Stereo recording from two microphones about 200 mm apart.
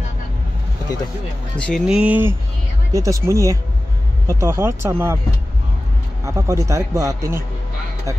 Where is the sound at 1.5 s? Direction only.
5° left (ahead or behind).